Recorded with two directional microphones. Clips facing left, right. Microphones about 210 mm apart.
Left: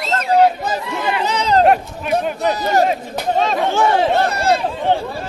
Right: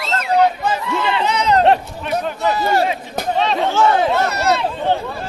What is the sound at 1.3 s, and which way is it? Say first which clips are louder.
Speech: left 1 dB; 35° left (ahead or behind).